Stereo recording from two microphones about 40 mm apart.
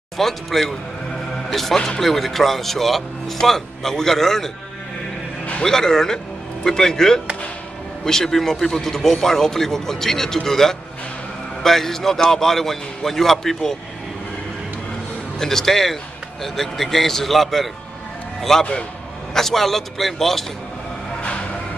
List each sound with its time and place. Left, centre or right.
0.2 s speech: centre
1.8 s a man's voice: centre
2.0 s speech: centre
5.6 s a man's voice: centre
15.3 s a man's voice: centre
21.2 s music: left